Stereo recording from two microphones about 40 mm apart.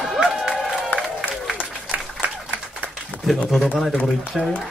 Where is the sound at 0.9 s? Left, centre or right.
Left.